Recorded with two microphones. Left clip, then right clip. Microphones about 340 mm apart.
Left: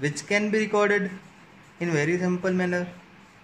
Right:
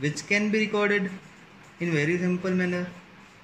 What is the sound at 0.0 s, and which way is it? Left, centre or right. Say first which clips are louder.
Speech: left 1 dB; centre.